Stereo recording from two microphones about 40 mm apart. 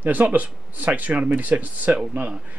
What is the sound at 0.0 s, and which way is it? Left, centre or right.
Speech, right.